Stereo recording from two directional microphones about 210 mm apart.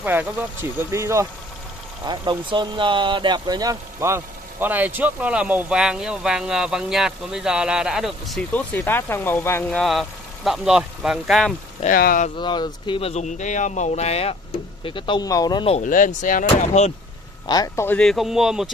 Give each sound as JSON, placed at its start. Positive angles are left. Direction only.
{"t": 0.0, "sound": "speech", "side_deg": -10}
{"t": 11.8, "sound": "speech", "side_deg": 45}
{"t": 12.4, "sound": "speech", "side_deg": 20}
{"t": 17.5, "sound": "speech", "side_deg": 15}